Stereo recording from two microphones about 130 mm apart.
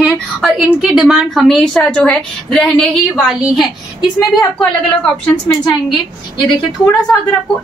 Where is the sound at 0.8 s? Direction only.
5° right (ahead or behind).